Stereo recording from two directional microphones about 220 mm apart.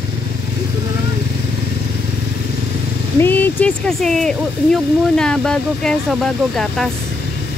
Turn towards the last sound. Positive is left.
turn(degrees=0)  # may be behind; listen again after turning